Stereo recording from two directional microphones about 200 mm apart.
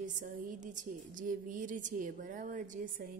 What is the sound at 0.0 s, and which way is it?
A woman's voice, 40° right (ahead or behind).